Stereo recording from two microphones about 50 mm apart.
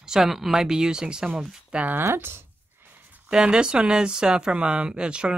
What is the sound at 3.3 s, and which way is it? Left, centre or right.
Speech, centre.